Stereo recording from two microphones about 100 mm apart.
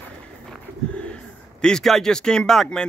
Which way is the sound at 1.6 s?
5° left (ahead or behind).